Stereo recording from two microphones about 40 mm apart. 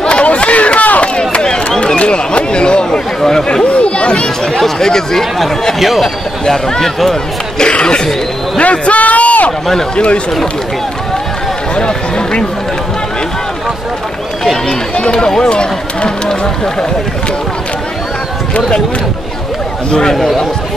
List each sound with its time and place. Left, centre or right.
0.0 s chatter: left
1.3 s a sound: left
3.6 s children playing: left
4.6 s speech: centre
5.8 s speech: centre
6.4 s speech: centre
8.5 s a sound: left
9.9 s speech: left
11.7 s speech: left
14.7 s speech: left
19.9 s speech: centre